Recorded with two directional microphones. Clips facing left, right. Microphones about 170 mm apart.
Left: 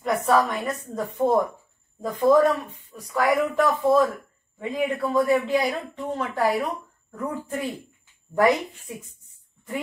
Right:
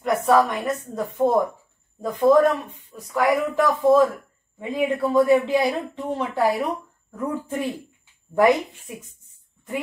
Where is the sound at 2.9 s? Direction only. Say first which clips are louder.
Right 2 dB; centre (ahead or behind).